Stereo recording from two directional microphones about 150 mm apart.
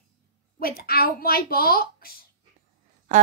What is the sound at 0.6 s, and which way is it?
A woman's voice, 85° left.